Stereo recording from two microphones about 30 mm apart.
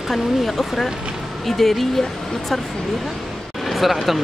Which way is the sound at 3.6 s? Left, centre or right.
Centre.